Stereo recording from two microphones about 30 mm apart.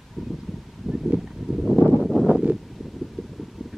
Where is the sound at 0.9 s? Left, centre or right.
Centre.